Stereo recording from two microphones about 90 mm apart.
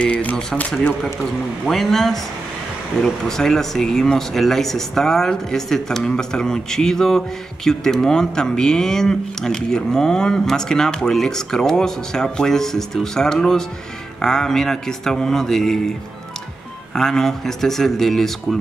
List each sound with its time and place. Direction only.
0.0 s speech: 15° left (ahead or behind)
1.7 s speech: centre (ahead or behind)
16.9 s speech: 5° left (ahead or behind)